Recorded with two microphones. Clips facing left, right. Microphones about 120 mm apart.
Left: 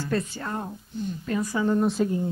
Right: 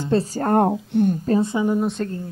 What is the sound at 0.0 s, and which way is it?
Speech, 30° right (ahead or behind).